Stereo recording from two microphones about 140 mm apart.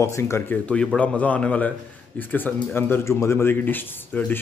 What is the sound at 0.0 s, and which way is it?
Speech, 20° left (ahead or behind).